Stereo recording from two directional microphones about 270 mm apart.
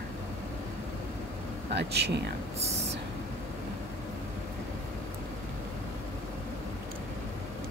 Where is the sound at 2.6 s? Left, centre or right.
Right.